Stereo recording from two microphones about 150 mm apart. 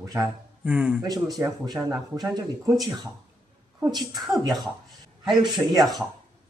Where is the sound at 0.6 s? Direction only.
10° right (ahead or behind).